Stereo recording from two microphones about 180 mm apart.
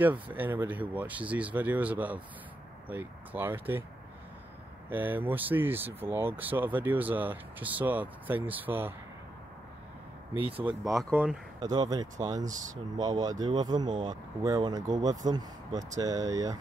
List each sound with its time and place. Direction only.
0.0 s speech: 10° right (ahead or behind)
4.8 s speech: 10° right (ahead or behind)
10.8 s speech: centre (ahead or behind)
11.6 s speech: 20° right (ahead or behind)